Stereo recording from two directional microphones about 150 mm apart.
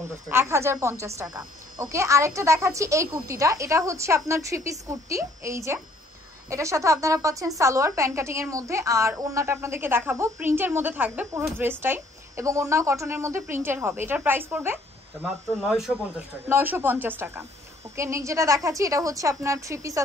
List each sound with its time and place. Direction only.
0.3 s a woman's voice: 15° right (ahead or behind)
15.6 s speech: centre (ahead or behind)
16.4 s a woman's voice: 15° right (ahead or behind)